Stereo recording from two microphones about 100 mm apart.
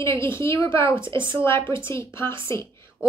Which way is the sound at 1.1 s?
55° right (ahead or behind).